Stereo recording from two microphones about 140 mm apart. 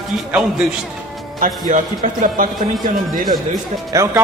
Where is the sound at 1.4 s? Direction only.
65° right (ahead or behind).